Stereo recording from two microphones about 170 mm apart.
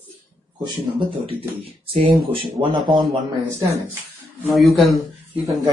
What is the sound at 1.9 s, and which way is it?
Speech, centre (ahead or behind).